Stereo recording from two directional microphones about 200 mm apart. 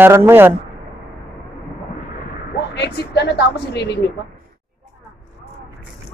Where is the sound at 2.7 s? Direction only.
55° left (ahead or behind).